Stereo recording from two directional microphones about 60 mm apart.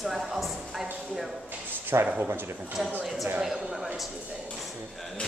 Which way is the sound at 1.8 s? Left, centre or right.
Right.